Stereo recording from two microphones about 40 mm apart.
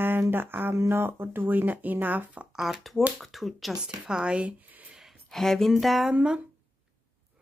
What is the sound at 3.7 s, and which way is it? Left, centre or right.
Speech, right.